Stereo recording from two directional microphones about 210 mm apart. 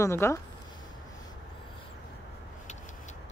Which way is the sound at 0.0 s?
15° left (ahead or behind).